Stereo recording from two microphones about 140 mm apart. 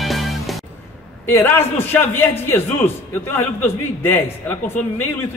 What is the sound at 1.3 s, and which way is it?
A man's voice, 15° left (ahead or behind).